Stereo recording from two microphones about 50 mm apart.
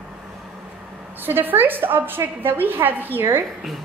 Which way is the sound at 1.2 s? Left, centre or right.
Right.